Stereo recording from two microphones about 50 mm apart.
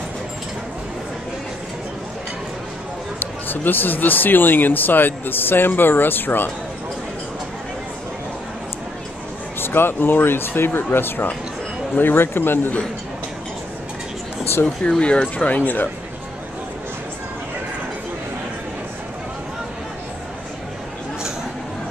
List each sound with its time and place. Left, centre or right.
3.2 s speech: left
9.6 s speech: left
14.8 s speech: left